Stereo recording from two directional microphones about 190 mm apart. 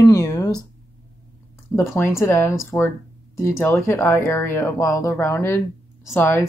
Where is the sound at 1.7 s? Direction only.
15° left (ahead or behind).